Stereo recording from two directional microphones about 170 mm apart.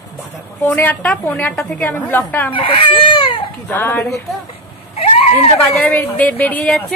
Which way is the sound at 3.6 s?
10° left (ahead or behind).